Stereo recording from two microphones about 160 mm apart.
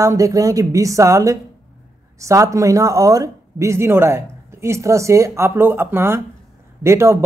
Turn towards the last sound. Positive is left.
turn(degrees=-15)  # may be behind; listen again after turning